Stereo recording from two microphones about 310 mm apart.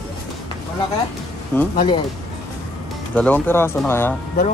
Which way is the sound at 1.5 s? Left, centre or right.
Centre.